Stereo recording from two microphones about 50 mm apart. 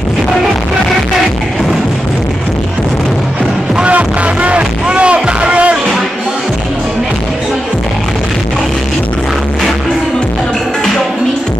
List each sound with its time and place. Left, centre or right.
4.4 s music: right